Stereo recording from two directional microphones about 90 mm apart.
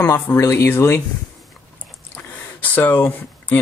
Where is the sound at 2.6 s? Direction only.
20° left (ahead or behind).